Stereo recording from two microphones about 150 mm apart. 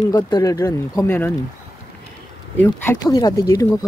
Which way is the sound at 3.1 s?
25° left (ahead or behind).